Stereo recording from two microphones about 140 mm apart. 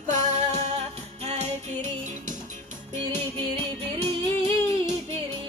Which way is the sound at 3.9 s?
50° right (ahead or behind).